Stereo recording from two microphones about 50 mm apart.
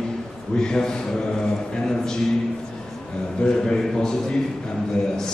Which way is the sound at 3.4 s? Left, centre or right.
Centre.